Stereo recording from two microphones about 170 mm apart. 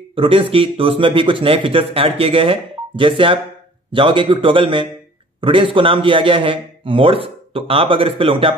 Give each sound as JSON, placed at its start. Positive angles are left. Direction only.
{"t": 0.1, "sound": "speech", "side_deg": -35}